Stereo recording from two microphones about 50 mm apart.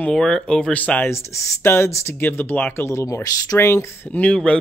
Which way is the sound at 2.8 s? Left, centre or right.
Left.